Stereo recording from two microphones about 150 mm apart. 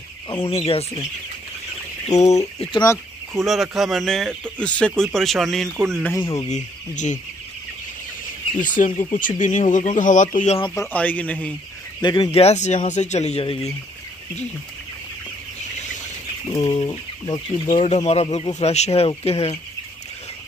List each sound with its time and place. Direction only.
0.3 s speech: 40° left (ahead or behind)
2.1 s speech: 50° left (ahead or behind)
3.4 s a man's voice: centre (ahead or behind)
6.0 s speech: 20° left (ahead or behind)
6.5 s speech: 55° left (ahead or behind)
8.5 s speech: 60° left (ahead or behind)
10.7 s speech: 15° left (ahead or behind)
12.0 s speech: 30° left (ahead or behind)
16.5 s speech: 25° left (ahead or behind)
17.8 s speech: 45° left (ahead or behind)